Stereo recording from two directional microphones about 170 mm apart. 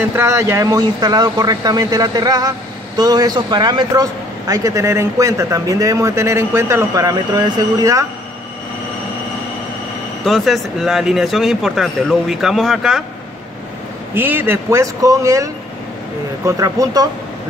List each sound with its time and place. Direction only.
0.0 s a man's voice: 15° right (ahead or behind)
10.2 s speech: centre (ahead or behind)
14.1 s a man's voice: 10° right (ahead or behind)